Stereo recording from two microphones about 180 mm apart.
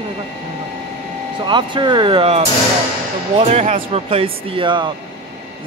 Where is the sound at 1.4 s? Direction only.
25° right (ahead or behind).